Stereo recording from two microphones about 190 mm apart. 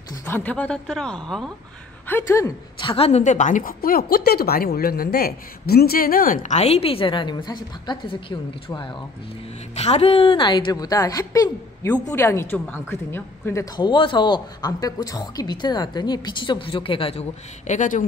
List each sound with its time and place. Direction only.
0.1 s a woman's voice: 10° left (ahead or behind)
2.9 s a woman's voice: 35° left (ahead or behind)